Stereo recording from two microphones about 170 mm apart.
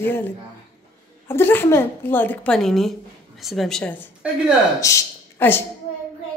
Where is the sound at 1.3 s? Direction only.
10° left (ahead or behind).